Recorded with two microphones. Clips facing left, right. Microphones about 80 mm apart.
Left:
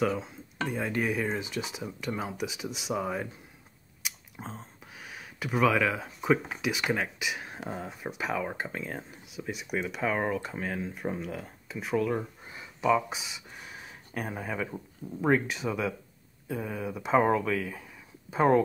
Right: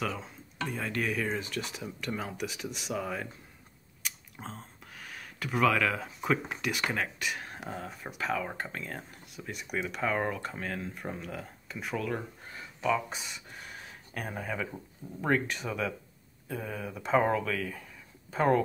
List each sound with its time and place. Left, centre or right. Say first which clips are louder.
0.7 s speech: left 3 dB; centre
2.9 s speech: left 3 dB; centre
4.0 s speech: left 1 dB; centre
13.1 s speech: left 2 dB; centre